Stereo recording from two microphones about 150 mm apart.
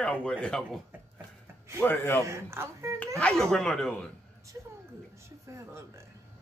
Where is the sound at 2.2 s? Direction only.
20° right (ahead or behind).